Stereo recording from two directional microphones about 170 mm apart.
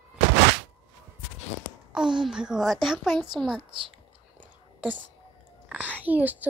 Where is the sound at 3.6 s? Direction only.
30° right (ahead or behind).